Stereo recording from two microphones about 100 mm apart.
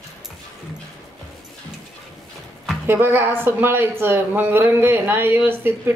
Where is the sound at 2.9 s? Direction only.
20° right (ahead or behind).